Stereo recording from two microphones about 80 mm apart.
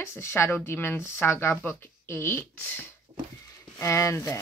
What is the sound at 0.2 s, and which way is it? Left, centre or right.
Speech, left.